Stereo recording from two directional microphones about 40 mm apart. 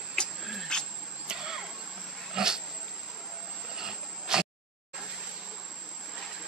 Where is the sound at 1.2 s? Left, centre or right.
Centre.